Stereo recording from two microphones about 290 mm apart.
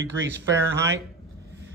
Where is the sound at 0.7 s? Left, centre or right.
Centre.